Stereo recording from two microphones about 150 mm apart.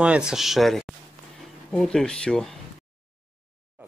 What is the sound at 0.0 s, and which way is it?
Speech, 5° right (ahead or behind).